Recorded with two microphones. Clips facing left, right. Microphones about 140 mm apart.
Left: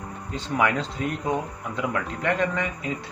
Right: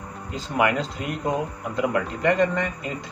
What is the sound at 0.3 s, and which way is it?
Speech, 5° right (ahead or behind).